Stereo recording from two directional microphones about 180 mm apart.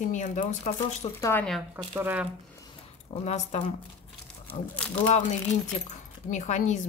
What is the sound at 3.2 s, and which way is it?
Speech, 35° left (ahead or behind).